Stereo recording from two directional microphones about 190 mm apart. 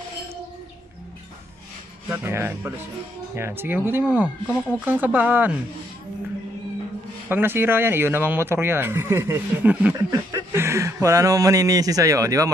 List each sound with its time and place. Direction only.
2.0 s speech: 10° right (ahead or behind)
7.2 s speech: 10° right (ahead or behind)